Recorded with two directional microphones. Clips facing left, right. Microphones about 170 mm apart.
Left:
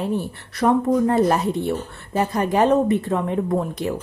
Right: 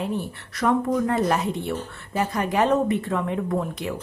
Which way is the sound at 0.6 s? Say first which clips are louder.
Left 4 dB; 30° left (ahead or behind).